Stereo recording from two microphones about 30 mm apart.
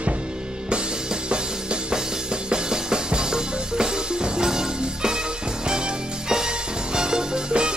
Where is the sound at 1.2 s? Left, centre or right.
Right.